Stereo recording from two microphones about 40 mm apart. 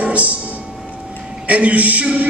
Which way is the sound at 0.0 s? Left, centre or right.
Right.